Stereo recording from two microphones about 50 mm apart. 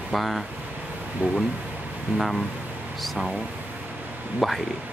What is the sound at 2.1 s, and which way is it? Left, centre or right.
Speech, centre.